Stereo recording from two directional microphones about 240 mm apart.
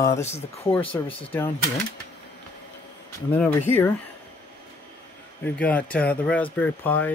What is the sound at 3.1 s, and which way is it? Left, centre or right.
Speech, centre.